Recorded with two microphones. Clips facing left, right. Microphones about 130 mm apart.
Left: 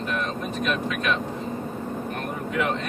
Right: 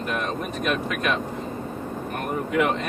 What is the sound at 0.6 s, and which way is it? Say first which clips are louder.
Speech: right 1 dB; 50° right (ahead or behind).